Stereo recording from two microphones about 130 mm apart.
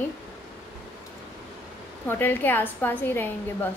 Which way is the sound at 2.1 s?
15° left (ahead or behind).